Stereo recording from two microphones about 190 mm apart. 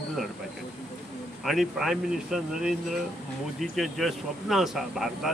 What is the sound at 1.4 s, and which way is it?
Speech, centre (ahead or behind).